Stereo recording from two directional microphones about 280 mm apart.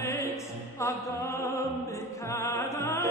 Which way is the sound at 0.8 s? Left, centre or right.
Centre.